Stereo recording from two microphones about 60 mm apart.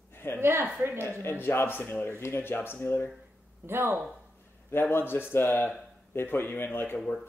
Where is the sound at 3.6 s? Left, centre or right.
Right.